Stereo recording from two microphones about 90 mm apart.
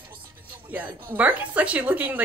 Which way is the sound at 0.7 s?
20° right (ahead or behind).